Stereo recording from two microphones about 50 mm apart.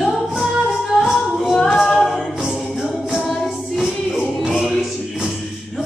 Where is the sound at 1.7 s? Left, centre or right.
Centre.